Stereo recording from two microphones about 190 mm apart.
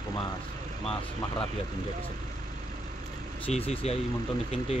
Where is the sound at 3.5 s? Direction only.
30° left (ahead or behind).